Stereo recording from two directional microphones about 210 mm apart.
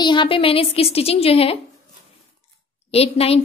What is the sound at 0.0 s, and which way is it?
Speech, 20° left (ahead or behind).